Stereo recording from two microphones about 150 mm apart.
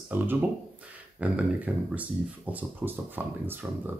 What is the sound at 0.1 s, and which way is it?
Speech, 15° right (ahead or behind).